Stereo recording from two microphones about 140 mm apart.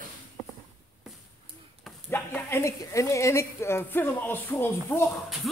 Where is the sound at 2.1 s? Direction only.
15° left (ahead or behind).